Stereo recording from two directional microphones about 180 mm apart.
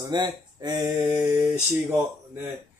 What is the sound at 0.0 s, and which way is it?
Speech, 25° right (ahead or behind).